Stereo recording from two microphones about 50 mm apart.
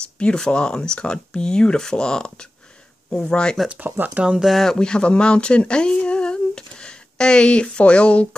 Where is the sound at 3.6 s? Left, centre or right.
Right.